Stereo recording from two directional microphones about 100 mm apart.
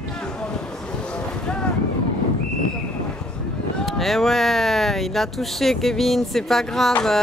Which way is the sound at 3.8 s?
Centre (ahead or behind).